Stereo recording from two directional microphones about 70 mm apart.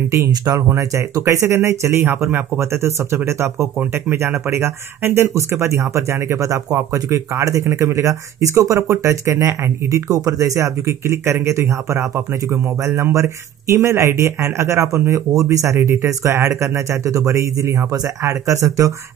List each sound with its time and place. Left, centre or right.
0.3 s speech: right
0.7 s speech: right